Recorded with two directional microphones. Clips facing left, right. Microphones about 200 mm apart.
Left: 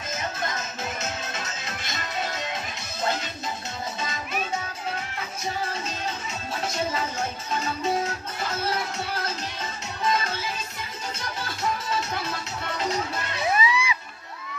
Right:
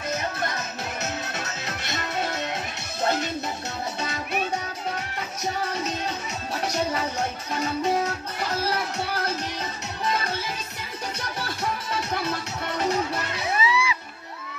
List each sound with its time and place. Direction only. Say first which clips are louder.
1.3 s music: right 2 dB; 65° right (ahead or behind)
13.6 s music: right 1 dB; 15° left (ahead or behind)